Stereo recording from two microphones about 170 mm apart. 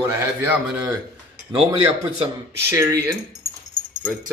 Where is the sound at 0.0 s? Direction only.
10° right (ahead or behind).